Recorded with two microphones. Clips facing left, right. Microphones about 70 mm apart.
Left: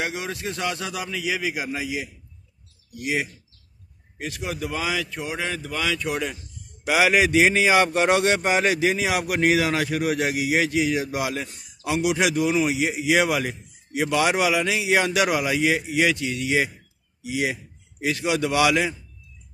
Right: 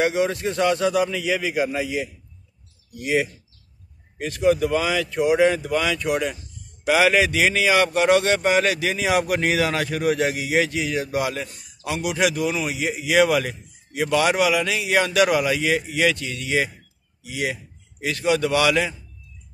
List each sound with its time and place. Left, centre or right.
0.0 s a man's voice: centre
6.9 s a man's voice: centre
9.0 s a man's voice: centre